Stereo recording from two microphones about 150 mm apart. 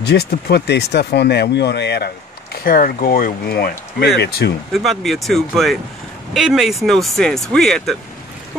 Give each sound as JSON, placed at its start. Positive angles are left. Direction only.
{"t": 0.0, "sound": "speech", "side_deg": 90}
{"t": 2.5, "sound": "speech", "side_deg": 75}
{"t": 4.7, "sound": "speech", "side_deg": 0}